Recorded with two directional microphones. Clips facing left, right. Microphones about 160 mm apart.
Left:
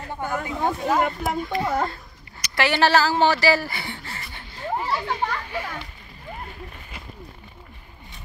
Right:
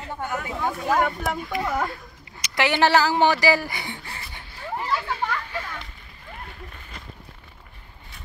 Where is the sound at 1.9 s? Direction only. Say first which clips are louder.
Right 1 dB; 15° right (ahead or behind).